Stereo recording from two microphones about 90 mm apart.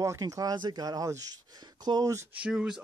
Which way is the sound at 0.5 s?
50° right (ahead or behind).